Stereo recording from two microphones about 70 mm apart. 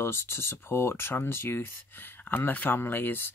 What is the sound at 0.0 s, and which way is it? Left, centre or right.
Speech, left.